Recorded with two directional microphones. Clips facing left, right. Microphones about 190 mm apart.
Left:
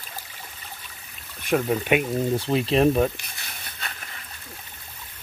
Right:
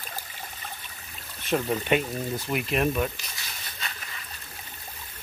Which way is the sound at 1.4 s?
10° left (ahead or behind).